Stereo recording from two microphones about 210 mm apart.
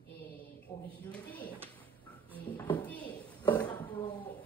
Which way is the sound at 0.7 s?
15° left (ahead or behind).